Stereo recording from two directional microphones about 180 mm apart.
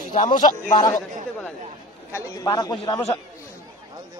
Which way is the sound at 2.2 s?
20° left (ahead or behind).